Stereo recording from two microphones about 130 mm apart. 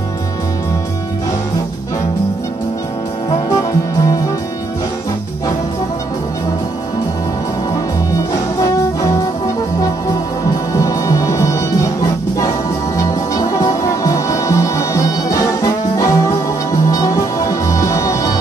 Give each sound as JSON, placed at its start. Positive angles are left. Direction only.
{"t": 3.4, "sound": "music", "side_deg": 25}
{"t": 8.5, "sound": "brass instrument", "side_deg": 25}
{"t": 10.7, "sound": "music", "side_deg": 25}